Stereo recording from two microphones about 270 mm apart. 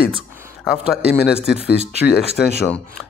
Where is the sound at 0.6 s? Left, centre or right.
Centre.